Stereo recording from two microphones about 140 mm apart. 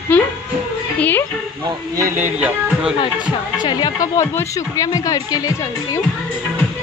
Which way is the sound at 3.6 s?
30° left (ahead or behind).